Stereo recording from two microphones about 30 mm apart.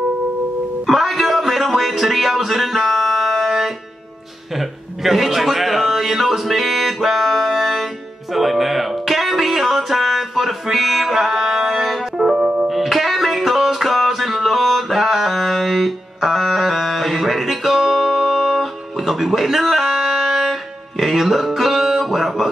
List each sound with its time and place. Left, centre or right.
0.8 s music: centre
4.6 s a sound: centre
8.3 s music: centre
12.2 s music: right
12.6 s music: centre